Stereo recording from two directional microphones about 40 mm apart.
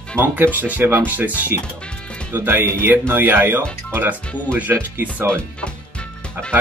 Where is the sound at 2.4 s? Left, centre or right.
Right.